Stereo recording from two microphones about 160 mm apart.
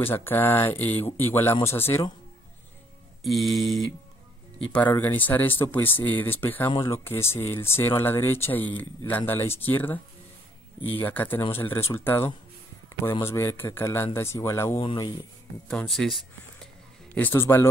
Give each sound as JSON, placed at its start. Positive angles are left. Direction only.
{"t": 0.0, "sound": "speech", "side_deg": 15}
{"t": 3.3, "sound": "speech", "side_deg": 0}
{"t": 4.6, "sound": "speech", "side_deg": 10}
{"t": 11.0, "sound": "speech", "side_deg": 10}
{"t": 15.7, "sound": "speech", "side_deg": 5}
{"t": 17.1, "sound": "speech", "side_deg": 10}